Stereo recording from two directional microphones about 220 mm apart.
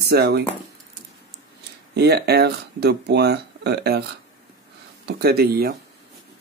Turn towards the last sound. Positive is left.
turn(degrees=-45)  # may be behind; listen again after turning